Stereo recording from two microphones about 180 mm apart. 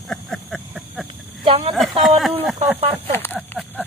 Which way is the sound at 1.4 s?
30° right (ahead or behind).